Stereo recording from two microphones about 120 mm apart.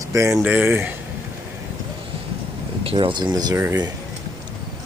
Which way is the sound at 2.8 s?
45° right (ahead or behind).